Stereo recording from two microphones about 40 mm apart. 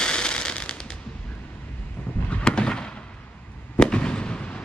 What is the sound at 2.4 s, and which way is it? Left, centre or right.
Fireworks, left.